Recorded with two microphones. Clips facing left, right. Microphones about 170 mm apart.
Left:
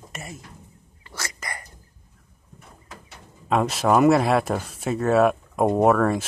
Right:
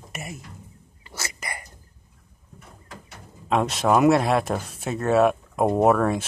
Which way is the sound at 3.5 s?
Centre (ahead or behind).